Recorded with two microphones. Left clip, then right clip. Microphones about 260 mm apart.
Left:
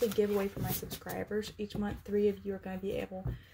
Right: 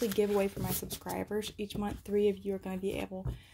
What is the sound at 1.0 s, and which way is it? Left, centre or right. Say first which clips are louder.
Speech: right 1 dB; right.